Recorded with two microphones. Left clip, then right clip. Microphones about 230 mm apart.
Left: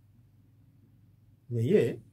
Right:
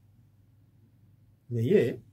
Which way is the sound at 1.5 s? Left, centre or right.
Centre.